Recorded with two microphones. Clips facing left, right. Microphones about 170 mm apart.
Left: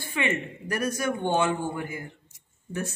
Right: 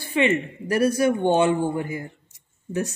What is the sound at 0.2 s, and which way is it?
Speech, 25° right (ahead or behind).